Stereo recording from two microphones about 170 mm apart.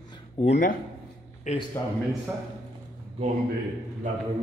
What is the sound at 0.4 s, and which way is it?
A man's voice, 45° left (ahead or behind).